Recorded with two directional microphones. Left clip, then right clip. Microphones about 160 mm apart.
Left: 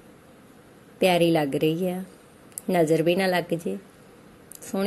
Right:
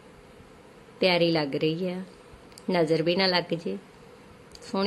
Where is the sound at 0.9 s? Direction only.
20° left (ahead or behind).